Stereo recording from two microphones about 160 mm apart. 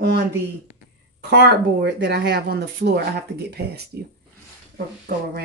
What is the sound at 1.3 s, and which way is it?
Speech, 90° right.